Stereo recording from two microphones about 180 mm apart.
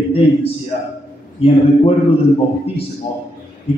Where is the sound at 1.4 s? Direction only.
35° left (ahead or behind).